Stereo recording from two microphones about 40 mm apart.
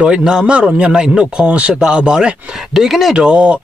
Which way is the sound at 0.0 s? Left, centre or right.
Right.